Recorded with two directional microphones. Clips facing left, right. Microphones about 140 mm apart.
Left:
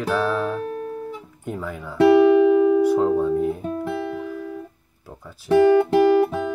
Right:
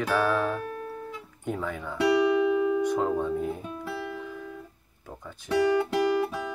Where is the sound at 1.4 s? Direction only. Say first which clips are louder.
Left 1 dB; 5° left (ahead or behind).